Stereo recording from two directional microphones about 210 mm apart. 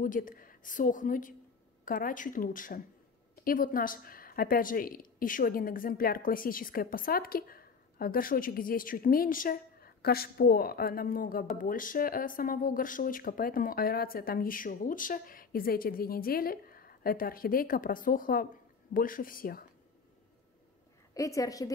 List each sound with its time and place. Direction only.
0.0 s a woman's voice: 40° left (ahead or behind)
21.1 s a woman's voice: 15° left (ahead or behind)